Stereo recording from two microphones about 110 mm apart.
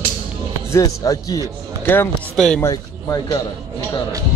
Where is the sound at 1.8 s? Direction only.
20° left (ahead or behind).